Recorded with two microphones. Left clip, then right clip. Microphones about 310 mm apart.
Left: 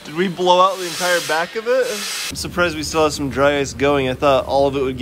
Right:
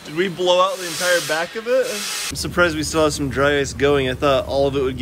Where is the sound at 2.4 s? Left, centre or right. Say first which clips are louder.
Right 2 dB; centre.